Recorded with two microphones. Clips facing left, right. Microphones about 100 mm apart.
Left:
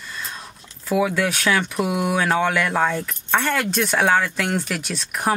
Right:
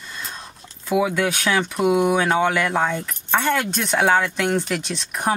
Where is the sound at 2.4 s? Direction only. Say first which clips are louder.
Right 1 dB; 20° right (ahead or behind).